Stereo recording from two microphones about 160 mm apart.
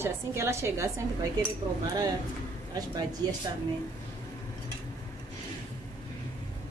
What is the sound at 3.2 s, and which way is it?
Speech, 25° right (ahead or behind).